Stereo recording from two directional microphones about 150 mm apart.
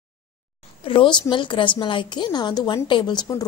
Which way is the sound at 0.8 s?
35° left (ahead or behind).